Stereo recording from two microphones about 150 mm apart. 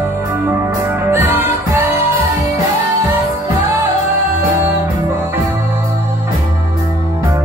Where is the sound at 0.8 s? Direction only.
15° right (ahead or behind).